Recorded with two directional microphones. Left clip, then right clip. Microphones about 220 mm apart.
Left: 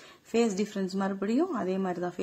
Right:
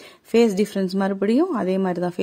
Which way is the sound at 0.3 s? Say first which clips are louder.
Right 10 dB; 40° right (ahead or behind).